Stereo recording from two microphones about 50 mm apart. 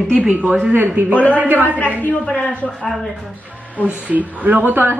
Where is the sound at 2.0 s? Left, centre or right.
Left.